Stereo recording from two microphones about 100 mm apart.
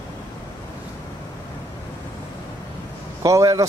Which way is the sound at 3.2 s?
35° right (ahead or behind).